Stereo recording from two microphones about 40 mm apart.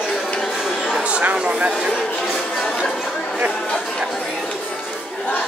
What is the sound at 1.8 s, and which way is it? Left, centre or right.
Chatter, centre.